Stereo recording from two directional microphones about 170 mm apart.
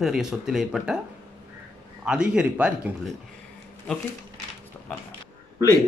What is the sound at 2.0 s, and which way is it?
Speech, 5° right (ahead or behind).